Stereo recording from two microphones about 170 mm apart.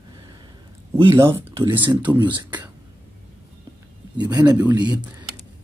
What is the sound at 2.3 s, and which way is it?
Speech, 25° right (ahead or behind).